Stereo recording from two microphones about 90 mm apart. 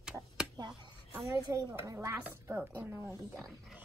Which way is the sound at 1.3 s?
35° right (ahead or behind).